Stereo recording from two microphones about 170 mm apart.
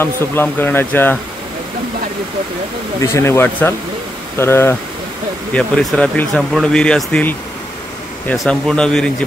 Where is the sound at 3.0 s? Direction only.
15° left (ahead or behind).